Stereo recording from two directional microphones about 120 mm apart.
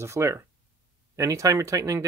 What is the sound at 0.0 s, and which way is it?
Speech, 25° right (ahead or behind).